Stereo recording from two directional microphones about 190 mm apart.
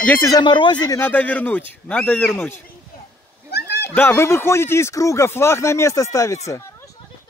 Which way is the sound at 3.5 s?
60° left (ahead or behind).